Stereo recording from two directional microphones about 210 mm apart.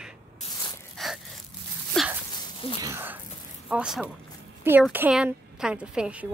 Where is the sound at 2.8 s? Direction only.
10° right (ahead or behind).